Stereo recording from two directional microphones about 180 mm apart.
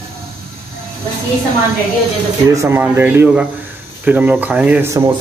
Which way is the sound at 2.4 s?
15° right (ahead or behind).